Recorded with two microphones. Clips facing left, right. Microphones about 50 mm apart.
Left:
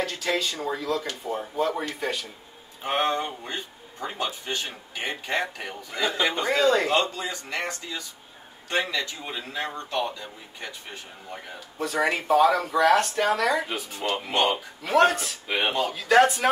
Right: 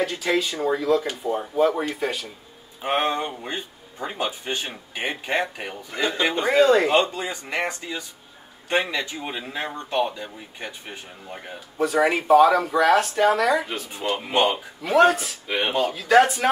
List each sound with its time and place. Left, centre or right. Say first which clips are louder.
0.0 s speech: right 4 dB; centre
2.8 s speech: right 2 dB; right
5.9 s speech: right 2 dB; centre
6.9 s speech: right 4 dB; right
11.8 s speech: right 5 dB; centre
14.2 s speech: right 4 dB; centre
14.5 s speech: right 1 dB; centre
15.7 s speech: right 3 dB; centre
16.0 s speech: right 1 dB; centre